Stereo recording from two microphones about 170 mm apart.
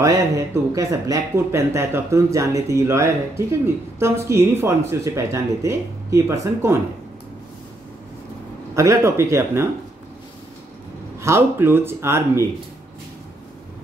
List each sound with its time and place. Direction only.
0.7 s speech: 20° right (ahead or behind)
8.7 s speech: 15° right (ahead or behind)
11.1 s speech: 15° right (ahead or behind)